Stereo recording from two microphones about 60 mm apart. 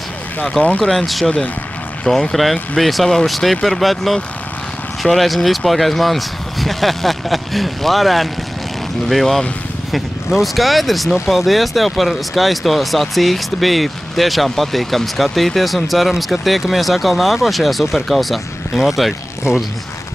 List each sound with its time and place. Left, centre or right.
0.4 s speech: left
0.9 s speech: centre
1.2 s speech: centre
2.0 s speech: centre